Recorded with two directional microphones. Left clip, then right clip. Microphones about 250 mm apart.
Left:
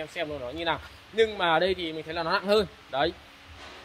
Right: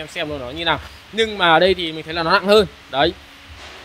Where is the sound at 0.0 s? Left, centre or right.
Centre.